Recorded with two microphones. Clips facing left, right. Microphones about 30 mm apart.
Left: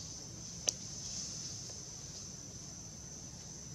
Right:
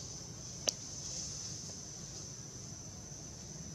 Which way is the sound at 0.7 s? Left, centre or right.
Centre.